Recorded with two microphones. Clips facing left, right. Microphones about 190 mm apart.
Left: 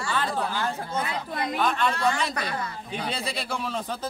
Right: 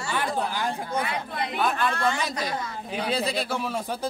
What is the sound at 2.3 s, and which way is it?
Speech, 60° left (ahead or behind).